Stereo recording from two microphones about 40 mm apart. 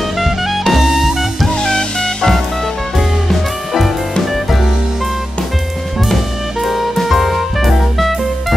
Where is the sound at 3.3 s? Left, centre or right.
Centre.